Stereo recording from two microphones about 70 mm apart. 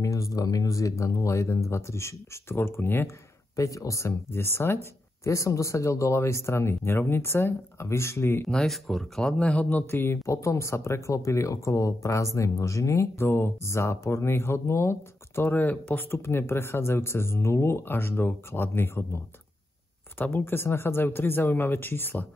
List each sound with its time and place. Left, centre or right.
0.0 s speech: left
3.5 s speech: left
4.3 s speech: left
5.2 s speech: left
8.5 s speech: centre; by 19.0 s left
20.2 s speech: left